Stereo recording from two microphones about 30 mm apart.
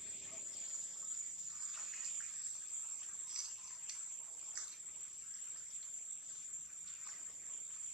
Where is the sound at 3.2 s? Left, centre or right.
Centre.